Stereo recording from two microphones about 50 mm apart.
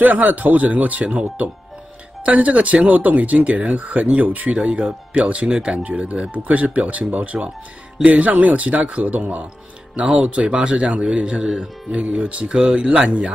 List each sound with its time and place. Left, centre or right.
0.0 s speech: right; by 5.9 s centre
5.9 s speech: right